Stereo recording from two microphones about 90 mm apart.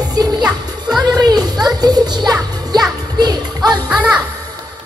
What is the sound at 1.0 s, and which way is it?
Music, 45° right (ahead or behind).